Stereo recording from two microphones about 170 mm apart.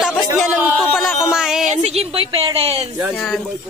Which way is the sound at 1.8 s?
35° right (ahead or behind).